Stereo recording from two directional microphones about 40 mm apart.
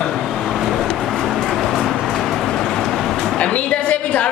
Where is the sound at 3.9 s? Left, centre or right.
Left.